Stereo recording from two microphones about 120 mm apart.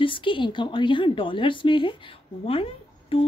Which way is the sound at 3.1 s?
50° left (ahead or behind).